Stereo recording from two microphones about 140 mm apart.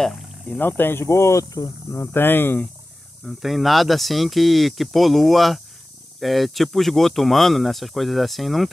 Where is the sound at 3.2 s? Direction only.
Centre (ahead or behind).